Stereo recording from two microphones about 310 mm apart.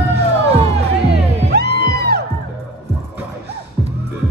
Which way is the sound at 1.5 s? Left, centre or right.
Right.